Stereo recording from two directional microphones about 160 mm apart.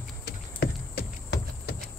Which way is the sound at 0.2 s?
85° left.